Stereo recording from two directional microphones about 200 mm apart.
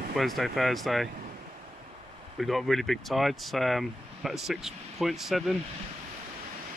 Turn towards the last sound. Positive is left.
turn(degrees=0)  # may be behind; listen again after turning